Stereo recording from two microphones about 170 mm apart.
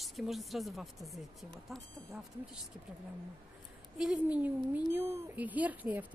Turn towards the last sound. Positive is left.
turn(degrees=-10)  # may be behind; listen again after turning